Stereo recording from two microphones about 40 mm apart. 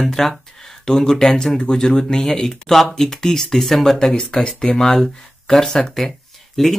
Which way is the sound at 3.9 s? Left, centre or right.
Left.